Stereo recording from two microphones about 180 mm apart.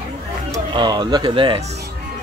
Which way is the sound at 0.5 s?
25° right (ahead or behind).